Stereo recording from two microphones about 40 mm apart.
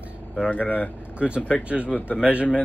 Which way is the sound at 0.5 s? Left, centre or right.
Left.